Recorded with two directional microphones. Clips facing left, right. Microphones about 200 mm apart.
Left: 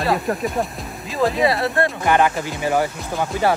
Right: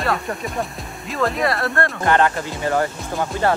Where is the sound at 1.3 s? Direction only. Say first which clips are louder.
Left 4 dB; centre (ahead or behind).